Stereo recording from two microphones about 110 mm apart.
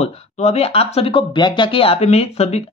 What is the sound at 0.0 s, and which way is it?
Speech, 75° left (ahead or behind).